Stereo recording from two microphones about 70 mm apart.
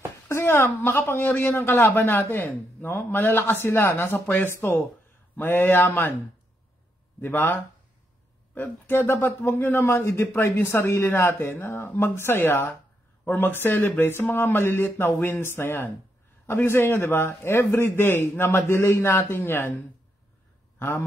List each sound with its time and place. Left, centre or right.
0.3 s a sound: left
0.8 s a man's voice: left
7.2 s a man's voice: left
8.5 s a man's voice: left